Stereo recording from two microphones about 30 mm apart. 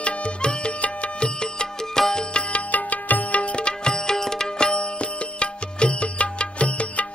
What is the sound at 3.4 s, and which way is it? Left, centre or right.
Music, left.